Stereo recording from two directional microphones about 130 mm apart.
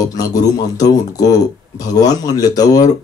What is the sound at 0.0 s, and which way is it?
Speech, 30° left (ahead or behind).